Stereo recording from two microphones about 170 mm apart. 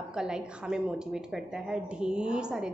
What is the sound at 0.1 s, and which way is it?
A woman's voice, 5° right (ahead or behind).